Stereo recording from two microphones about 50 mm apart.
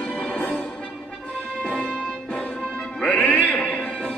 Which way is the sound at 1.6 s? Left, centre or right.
Left.